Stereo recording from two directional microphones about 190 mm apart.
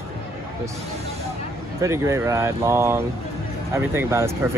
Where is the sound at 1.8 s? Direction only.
15° right (ahead or behind).